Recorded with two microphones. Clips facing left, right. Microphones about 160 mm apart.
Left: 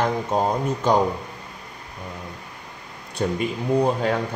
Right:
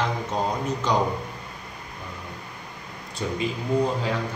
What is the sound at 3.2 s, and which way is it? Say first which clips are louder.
Speech: left 5 dB; 55° left (ahead or behind).